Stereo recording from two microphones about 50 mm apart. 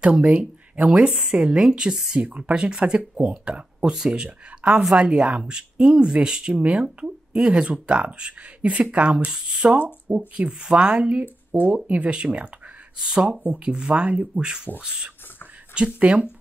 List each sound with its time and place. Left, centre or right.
0.0 s speech: centre
2.1 s speech: right
5.4 s speech: centre
16.0 s speech: right